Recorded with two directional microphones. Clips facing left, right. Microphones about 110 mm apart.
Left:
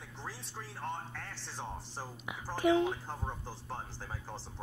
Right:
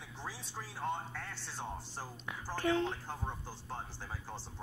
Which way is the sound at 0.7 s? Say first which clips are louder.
Right 2 dB; 5° right (ahead or behind).